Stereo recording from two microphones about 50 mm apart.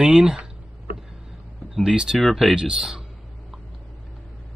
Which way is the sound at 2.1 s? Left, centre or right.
Centre.